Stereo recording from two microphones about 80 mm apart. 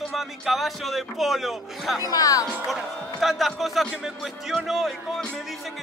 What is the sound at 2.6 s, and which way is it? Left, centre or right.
A man's voice, centre.